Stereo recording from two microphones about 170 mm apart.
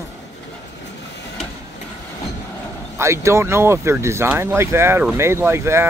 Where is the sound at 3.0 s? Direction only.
15° right (ahead or behind).